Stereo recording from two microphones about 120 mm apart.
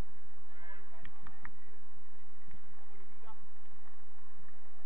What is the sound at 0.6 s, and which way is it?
Honk, 45° right (ahead or behind).